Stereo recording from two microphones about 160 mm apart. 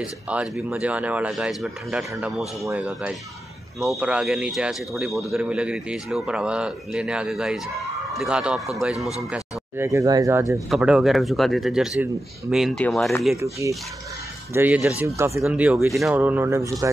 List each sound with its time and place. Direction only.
0.0 s a man's voice: 5° right (ahead or behind)
9.3 s speech: 15° right (ahead or behind)
10.7 s a man's voice: 5° right (ahead or behind)
13.4 s speech: 20° right (ahead or behind)
15.0 s speech: 20° right (ahead or behind); by 16.2 s centre (ahead or behind)
16.2 s speech: 10° right (ahead or behind)